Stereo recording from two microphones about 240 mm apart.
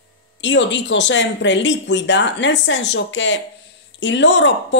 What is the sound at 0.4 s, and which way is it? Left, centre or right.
A woman's voice, left.